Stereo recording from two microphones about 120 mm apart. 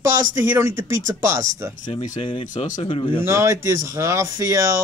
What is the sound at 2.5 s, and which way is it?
Speech, 90° left.